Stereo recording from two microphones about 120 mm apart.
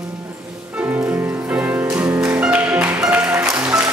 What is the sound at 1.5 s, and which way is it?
Music, 15° right (ahead or behind).